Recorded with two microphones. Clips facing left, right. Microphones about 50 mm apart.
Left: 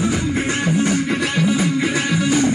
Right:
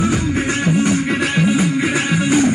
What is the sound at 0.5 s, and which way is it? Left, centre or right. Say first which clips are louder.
Music: right 2 dB; right.